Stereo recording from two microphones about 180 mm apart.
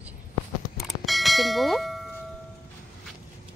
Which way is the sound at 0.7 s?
Centre (ahead or behind).